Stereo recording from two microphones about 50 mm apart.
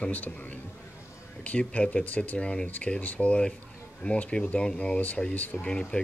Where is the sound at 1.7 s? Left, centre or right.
Left.